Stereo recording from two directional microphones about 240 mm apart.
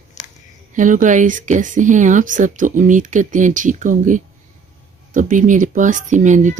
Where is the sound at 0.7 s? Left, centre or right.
Right.